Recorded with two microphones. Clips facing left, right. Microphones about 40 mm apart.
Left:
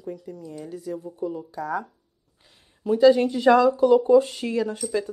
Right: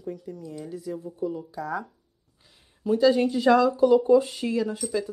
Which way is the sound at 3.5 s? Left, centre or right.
Centre.